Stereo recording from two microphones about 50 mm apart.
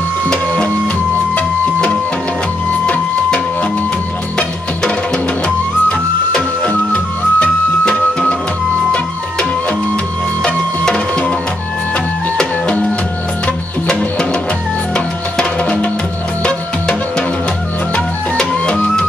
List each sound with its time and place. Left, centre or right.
1.3 s music: left
5.9 s music: left
10.4 s music: left
12.4 s music: left
15.0 s music: left
18.4 s music: centre